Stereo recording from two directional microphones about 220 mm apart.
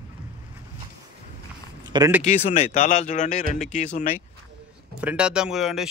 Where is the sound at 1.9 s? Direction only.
20° right (ahead or behind).